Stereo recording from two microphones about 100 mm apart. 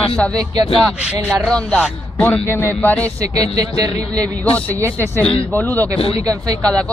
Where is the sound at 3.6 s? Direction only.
40° right (ahead or behind).